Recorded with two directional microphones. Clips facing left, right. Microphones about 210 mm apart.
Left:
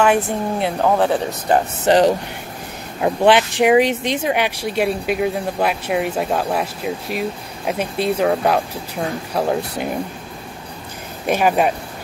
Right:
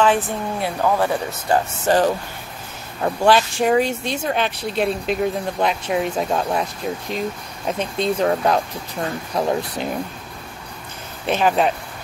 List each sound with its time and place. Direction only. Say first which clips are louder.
0.0 s speech: left 2 dB; 10° left (ahead or behind)
11.2 s speech: left 2 dB; 10° left (ahead or behind)